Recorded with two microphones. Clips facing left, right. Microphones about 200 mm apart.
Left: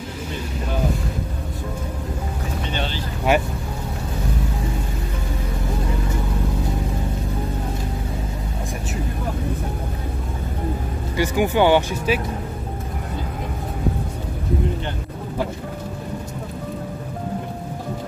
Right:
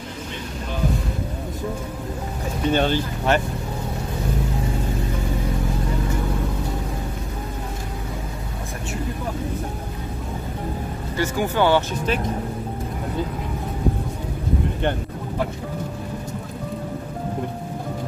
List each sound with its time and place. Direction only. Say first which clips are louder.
2.7 s speech: right 11 dB; 50° right (ahead or behind)
3.3 s speech: left 2 dB; 10° left (ahead or behind)
11.1 s speech: left 3 dB; 15° left (ahead or behind)